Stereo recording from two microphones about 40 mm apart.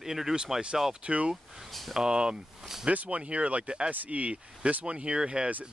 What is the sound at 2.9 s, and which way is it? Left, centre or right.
Speech, right.